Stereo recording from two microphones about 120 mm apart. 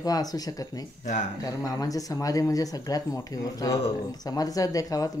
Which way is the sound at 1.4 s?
30° left (ahead or behind).